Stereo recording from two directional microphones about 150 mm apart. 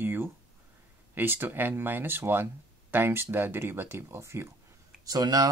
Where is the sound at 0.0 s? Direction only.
15° right (ahead or behind).